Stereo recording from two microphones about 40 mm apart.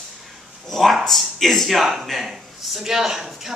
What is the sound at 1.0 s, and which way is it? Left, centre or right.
Speech, centre.